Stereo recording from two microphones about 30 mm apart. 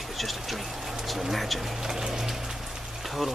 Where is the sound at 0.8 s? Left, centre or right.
Centre.